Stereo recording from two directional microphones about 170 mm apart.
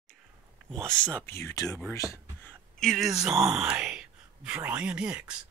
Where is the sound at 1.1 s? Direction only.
15° left (ahead or behind).